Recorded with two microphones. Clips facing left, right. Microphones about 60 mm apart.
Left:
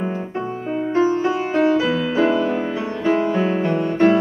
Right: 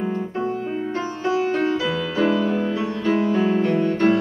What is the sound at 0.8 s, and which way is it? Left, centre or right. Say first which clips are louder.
Music: left 10 dB; left.